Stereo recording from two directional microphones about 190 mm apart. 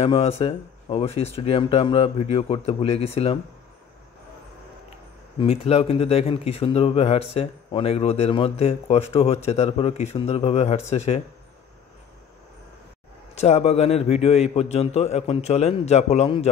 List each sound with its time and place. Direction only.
0.0 s speech: 30° left (ahead or behind)
5.4 s speech: 30° left (ahead or behind)
13.3 s speech: 35° left (ahead or behind)